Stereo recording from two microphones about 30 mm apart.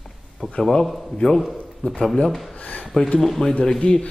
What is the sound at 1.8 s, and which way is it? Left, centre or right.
Speech, left.